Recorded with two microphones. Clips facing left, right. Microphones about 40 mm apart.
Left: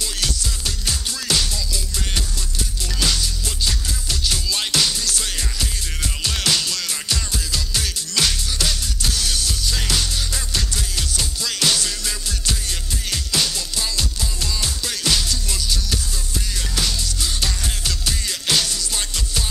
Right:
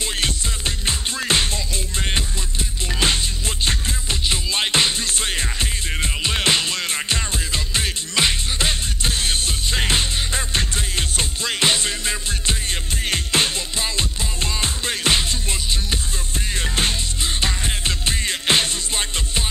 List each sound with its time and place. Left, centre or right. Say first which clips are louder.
0.0 s music: right 2 dB; right